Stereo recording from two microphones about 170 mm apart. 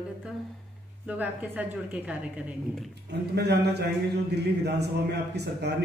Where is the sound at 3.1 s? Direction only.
75° right (ahead or behind).